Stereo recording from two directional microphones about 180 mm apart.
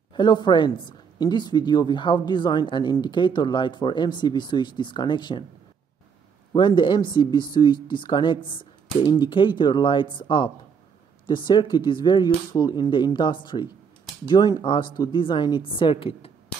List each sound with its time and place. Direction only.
0.1 s speech: 25° left (ahead or behind)
6.5 s speech: 25° left (ahead or behind)